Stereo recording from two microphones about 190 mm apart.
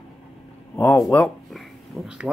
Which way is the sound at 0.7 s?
15° left (ahead or behind).